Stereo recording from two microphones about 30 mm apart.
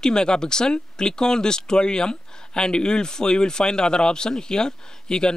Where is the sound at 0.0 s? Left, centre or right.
Left.